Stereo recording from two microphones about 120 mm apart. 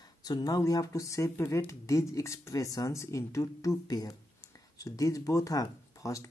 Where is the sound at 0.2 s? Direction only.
35° left (ahead or behind).